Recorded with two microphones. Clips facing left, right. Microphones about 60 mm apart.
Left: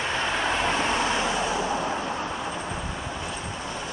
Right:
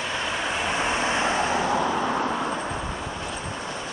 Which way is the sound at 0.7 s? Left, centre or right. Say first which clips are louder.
Even; right.